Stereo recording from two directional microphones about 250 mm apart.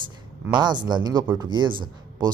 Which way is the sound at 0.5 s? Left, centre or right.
Centre.